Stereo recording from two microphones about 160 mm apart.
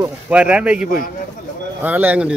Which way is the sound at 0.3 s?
10° right (ahead or behind).